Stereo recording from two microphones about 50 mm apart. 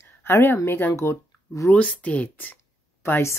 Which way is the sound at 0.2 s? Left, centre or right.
Left.